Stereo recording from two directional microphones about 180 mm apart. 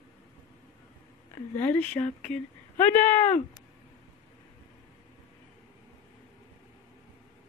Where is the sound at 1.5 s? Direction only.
10° left (ahead or behind).